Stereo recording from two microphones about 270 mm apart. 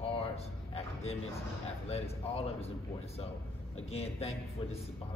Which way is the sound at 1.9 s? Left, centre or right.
Left.